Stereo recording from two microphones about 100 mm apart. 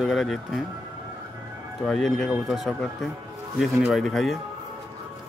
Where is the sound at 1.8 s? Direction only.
5° left (ahead or behind).